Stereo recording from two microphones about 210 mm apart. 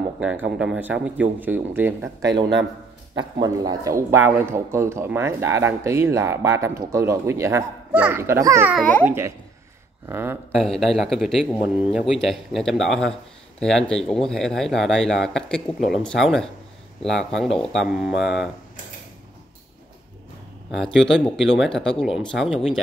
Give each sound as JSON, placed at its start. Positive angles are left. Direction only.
{"t": 0.2, "sound": "speech", "side_deg": -5}
{"t": 3.4, "sound": "speech", "side_deg": -15}
{"t": 8.7, "sound": "a child's voice", "side_deg": 5}
{"t": 9.0, "sound": "speech", "side_deg": -10}
{"t": 10.5, "sound": "speech", "side_deg": 0}
{"t": 20.7, "sound": "speech", "side_deg": 0}